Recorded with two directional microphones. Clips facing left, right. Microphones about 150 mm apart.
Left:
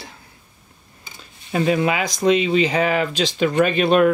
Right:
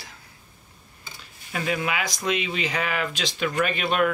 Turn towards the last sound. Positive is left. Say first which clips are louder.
# left 8 dB
turn(degrees=25)  # may be behind; listen again after turning